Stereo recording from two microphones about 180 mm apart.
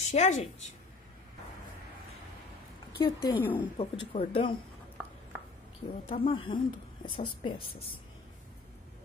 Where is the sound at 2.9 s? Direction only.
25° left (ahead or behind).